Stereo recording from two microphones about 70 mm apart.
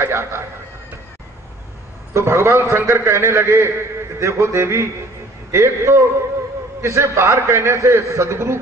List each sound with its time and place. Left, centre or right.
0.0 s a man's voice: right
2.1 s a man's voice: right